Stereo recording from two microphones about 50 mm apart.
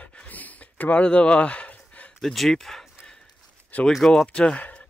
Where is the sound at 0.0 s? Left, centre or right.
Left.